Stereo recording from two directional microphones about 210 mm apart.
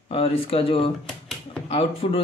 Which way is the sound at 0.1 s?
25° left (ahead or behind).